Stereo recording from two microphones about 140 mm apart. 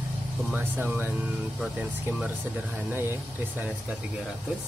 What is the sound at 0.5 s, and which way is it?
Speech, 15° right (ahead or behind).